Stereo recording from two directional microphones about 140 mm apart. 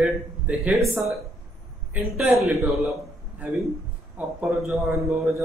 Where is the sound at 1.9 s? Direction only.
10° right (ahead or behind).